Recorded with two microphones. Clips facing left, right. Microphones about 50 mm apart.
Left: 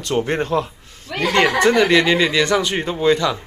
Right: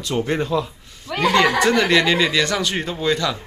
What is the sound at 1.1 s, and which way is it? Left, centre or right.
Speech, centre.